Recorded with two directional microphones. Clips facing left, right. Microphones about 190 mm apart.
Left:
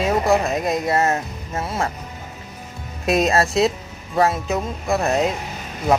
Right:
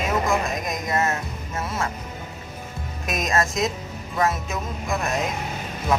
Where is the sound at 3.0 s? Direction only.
30° left (ahead or behind).